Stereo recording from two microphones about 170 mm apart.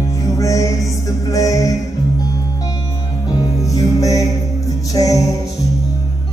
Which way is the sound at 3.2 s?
20° left (ahead or behind).